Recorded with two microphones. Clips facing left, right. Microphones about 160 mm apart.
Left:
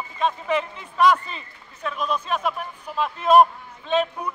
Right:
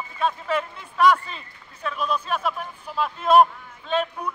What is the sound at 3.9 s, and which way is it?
Speech, 10° left (ahead or behind).